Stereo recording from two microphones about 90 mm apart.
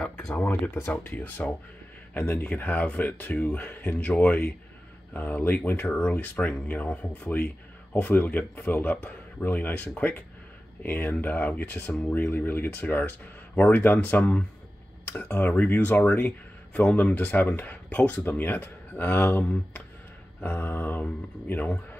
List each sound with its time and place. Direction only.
0.3 s speech: 20° left (ahead or behind)